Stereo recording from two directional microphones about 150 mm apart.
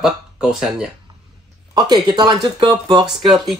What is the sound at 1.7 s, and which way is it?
Speech, 30° right (ahead or behind).